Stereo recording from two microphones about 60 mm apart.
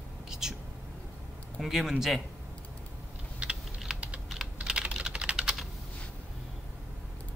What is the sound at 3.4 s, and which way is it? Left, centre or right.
Typing, centre.